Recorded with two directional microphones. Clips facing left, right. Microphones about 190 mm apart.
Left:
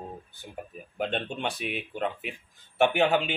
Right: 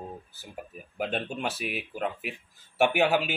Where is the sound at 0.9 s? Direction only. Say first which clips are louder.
Even; 5° right (ahead or behind).